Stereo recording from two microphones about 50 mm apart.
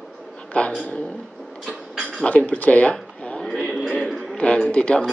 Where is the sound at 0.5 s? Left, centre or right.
Left.